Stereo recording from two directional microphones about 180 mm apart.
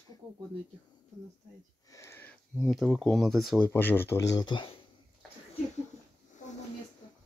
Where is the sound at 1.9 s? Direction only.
15° left (ahead or behind).